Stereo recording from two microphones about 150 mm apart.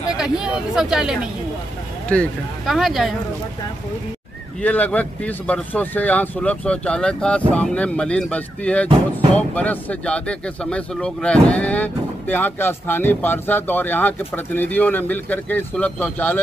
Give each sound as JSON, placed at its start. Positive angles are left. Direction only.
{"t": 0.1, "sound": "speech", "side_deg": -5}
{"t": 4.6, "sound": "speech", "side_deg": 10}